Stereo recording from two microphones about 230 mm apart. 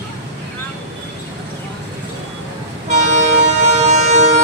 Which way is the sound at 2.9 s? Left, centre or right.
Right.